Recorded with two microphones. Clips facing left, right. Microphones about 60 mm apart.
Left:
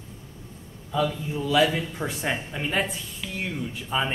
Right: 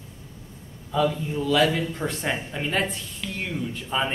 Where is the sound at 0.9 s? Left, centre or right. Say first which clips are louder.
Right 2 dB; centre.